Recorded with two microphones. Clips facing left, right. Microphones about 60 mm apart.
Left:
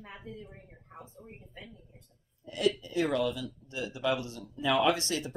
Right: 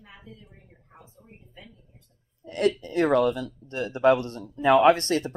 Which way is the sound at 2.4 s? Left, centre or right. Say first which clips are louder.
Right 5 dB; right.